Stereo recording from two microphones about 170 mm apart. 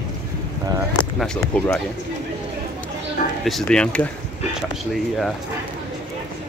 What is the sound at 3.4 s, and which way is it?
Speech, 5° left (ahead or behind).